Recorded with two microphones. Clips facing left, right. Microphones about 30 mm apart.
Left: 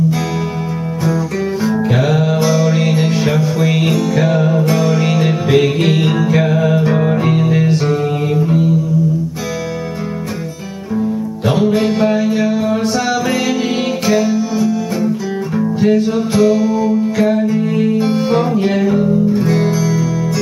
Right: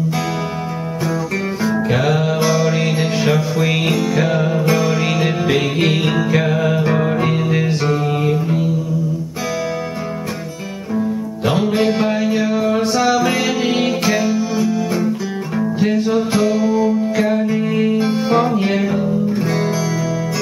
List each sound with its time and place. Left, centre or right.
1.6 s music: centre
11.4 s music: centre